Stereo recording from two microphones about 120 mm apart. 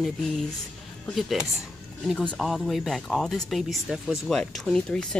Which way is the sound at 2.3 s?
Centre (ahead or behind).